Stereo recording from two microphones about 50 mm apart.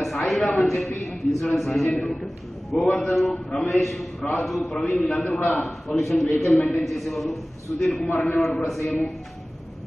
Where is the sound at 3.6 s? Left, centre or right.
Centre.